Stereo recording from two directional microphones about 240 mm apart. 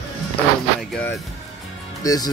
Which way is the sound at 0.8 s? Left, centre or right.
Centre.